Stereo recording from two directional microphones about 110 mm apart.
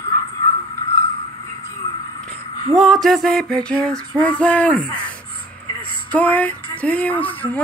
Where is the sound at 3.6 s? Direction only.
5° left (ahead or behind).